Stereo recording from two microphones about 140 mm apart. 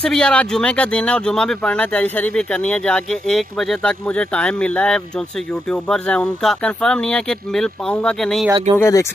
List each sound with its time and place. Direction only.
0.0 s speech: 5° left (ahead or behind)
8.7 s speech: 20° left (ahead or behind)